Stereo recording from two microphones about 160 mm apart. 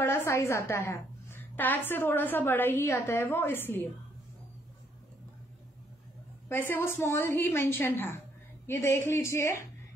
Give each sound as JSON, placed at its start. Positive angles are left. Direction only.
{"t": 0.0, "sound": "a woman's voice", "side_deg": 15}
{"t": 6.5, "sound": "a woman's voice", "side_deg": 15}